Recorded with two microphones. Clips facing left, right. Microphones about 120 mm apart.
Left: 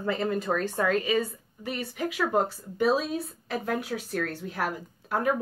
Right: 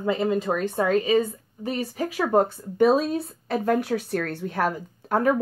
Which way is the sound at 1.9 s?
35° right (ahead or behind).